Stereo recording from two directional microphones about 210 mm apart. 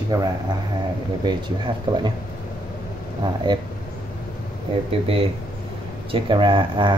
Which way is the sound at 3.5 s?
20° right (ahead or behind).